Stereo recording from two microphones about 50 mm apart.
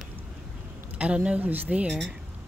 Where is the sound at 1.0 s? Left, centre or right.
Right.